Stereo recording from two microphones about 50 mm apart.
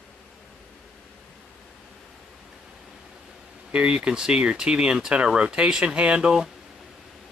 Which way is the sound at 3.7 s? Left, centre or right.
Right.